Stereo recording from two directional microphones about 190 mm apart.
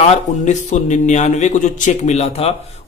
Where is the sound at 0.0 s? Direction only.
35° left (ahead or behind).